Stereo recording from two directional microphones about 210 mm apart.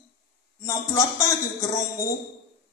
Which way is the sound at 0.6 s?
15° left (ahead or behind).